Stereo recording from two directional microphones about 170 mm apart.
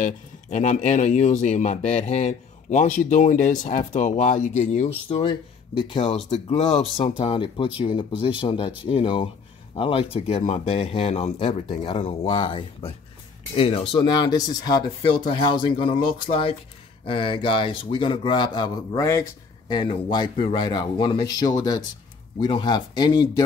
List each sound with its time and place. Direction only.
0.0 s speech: 45° left (ahead or behind); by 23.4 s 25° left (ahead or behind)